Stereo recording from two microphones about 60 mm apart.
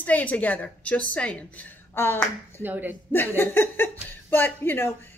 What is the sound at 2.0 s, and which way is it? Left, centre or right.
Speech, left.